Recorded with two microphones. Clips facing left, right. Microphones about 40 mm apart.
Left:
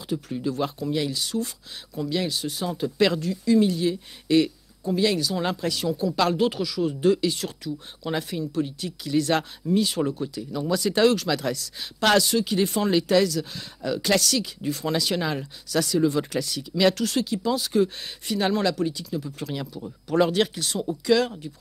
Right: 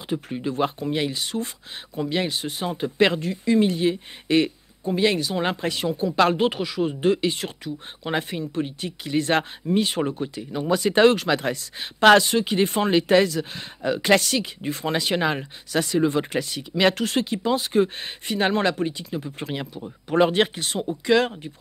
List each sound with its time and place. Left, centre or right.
0.1 s speech: right